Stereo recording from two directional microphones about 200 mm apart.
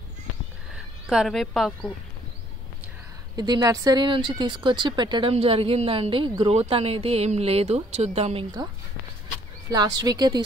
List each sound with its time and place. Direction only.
1.0 s speech: centre (ahead or behind)
3.3 s speech: 20° right (ahead or behind)
9.7 s speech: 20° right (ahead or behind)